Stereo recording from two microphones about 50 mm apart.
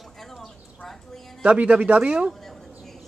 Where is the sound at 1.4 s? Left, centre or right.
Right.